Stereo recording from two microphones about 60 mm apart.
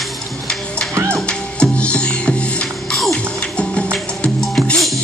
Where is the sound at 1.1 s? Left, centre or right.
Centre.